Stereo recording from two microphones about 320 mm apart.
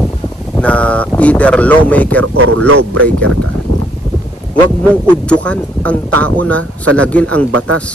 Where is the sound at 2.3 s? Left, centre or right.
Right.